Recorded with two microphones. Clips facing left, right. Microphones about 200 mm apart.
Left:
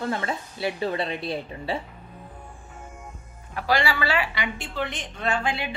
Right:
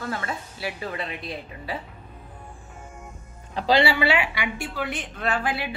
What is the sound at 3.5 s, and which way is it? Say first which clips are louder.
A woman's voice: right 4 dB; 15° right (ahead or behind).